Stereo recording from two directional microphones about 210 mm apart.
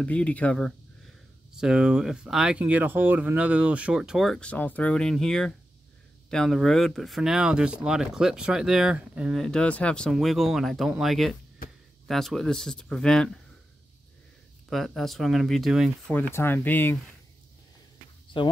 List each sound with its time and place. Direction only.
0.0 s speech: 5° left (ahead or behind)
14.7 s speech: centre (ahead or behind)
16.2 s speech: 10° left (ahead or behind)
18.3 s speech: 25° left (ahead or behind)